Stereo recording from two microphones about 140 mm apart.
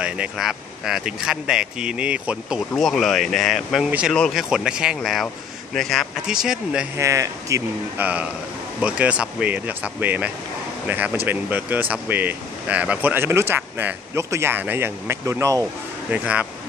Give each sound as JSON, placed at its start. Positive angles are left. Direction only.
{"t": 0.0, "sound": "speech", "side_deg": -5}
{"t": 2.7, "sound": "speech", "side_deg": 0}
{"t": 7.0, "sound": "speech", "side_deg": -20}
{"t": 8.8, "sound": "speech", "side_deg": -10}
{"t": 16.1, "sound": "speech", "side_deg": -10}